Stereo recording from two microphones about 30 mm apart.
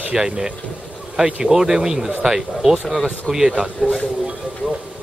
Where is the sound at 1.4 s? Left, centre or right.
Centre.